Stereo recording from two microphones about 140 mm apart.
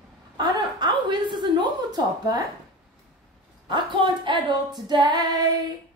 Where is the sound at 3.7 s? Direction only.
35° right (ahead or behind).